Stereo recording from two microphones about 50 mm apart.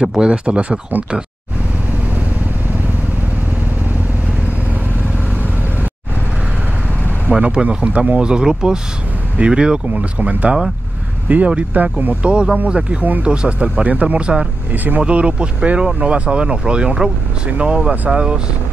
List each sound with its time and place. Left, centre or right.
0.0 s speech: centre
7.2 s speech: right
14.7 s speech: right
15.0 s speech: right